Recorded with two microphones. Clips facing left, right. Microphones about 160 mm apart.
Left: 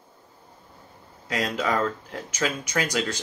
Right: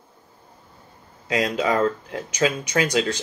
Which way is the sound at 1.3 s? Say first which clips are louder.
Right 4 dB; 20° right (ahead or behind).